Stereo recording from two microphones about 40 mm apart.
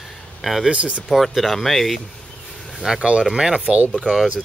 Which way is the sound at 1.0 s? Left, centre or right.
Centre.